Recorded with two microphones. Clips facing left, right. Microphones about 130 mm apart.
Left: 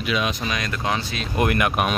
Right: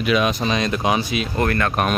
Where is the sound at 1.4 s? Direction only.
15° left (ahead or behind).